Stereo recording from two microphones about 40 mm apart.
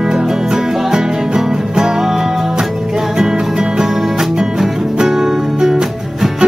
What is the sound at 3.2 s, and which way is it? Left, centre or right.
Music, centre.